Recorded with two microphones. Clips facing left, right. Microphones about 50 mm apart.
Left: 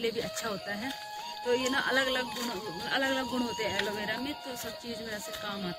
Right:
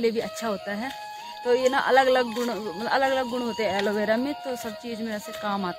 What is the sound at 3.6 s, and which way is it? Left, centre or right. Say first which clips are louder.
Speech: right 7 dB; right.